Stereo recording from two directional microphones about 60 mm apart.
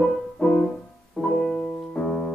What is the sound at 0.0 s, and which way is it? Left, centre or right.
Music, centre.